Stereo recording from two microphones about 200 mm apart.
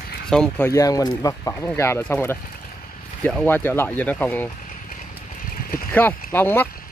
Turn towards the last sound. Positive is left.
turn(degrees=10)  # may be behind; listen again after turning